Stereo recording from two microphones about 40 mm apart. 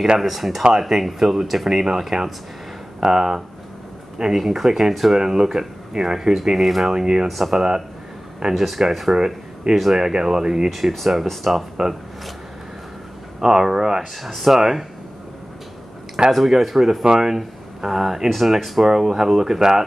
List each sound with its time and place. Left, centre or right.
0.2 s speech: centre
4.5 s speech: centre
6.9 s speech: centre
7.2 s speech: centre
7.5 s speech: centre
8.5 s speech: centre
9.1 s speech: centre
10.7 s speech: centre
13.4 s speech: centre
16.3 s speech: centre